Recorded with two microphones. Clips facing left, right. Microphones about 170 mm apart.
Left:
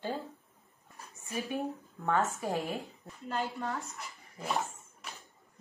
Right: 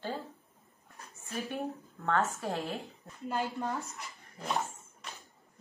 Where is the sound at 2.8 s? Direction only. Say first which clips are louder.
Right 3 dB; 20° right (ahead or behind).